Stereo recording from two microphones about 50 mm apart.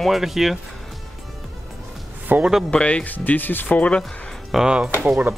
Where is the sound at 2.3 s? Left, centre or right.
Right.